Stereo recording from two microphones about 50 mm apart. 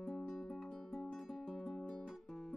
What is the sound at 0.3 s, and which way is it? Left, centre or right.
Music, centre.